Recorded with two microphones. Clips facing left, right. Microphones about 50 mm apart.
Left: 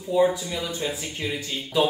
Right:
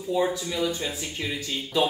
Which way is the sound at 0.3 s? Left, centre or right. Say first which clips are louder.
Right 2 dB; centre.